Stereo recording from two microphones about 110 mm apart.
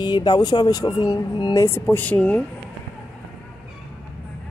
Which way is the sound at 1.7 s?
20° left (ahead or behind).